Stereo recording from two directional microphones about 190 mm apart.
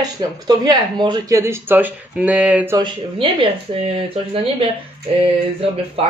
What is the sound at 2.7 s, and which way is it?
Speech, 25° right (ahead or behind).